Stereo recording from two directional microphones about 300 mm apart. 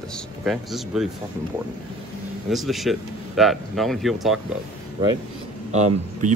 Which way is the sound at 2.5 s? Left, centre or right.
Centre.